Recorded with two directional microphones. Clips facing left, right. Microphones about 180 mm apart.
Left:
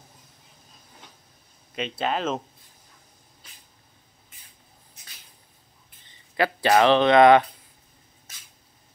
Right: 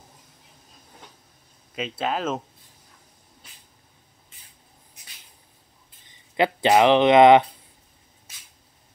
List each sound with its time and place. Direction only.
1.8 s speech: 5° right (ahead or behind)
6.0 s speech: 20° right (ahead or behind)